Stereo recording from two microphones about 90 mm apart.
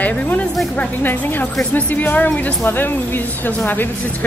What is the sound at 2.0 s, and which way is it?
Speech, 20° left (ahead or behind).